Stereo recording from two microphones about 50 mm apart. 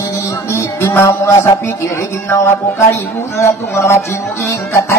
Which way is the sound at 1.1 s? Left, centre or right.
Left.